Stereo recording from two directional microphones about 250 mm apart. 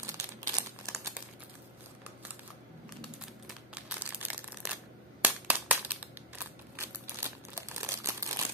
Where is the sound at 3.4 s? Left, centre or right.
Centre.